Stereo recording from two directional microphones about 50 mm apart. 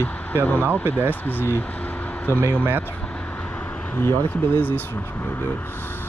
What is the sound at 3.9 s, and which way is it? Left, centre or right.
Speech, left.